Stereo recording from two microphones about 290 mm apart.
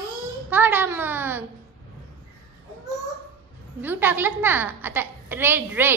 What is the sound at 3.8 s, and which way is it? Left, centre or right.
A woman's voice, centre.